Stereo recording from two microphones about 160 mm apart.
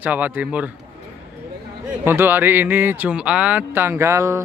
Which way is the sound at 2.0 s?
15° right (ahead or behind).